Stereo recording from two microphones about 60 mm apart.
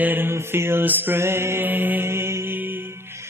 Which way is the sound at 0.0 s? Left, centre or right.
Right.